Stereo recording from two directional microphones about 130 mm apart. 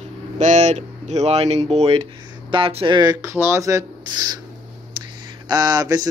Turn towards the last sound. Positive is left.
turn(degrees=-30)  # may be behind; listen again after turning